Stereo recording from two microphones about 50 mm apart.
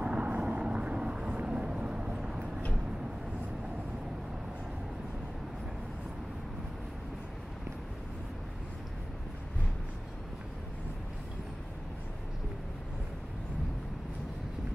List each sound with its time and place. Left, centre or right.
0.0 s vehicle: right